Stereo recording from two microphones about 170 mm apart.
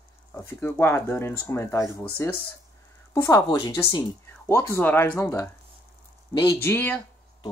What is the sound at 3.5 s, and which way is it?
Speech, 25° left (ahead or behind).